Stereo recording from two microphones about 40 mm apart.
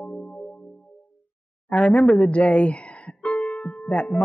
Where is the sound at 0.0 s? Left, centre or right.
Left.